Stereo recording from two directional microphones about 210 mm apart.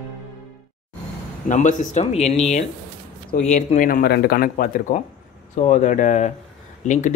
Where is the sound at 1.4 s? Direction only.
35° left (ahead or behind).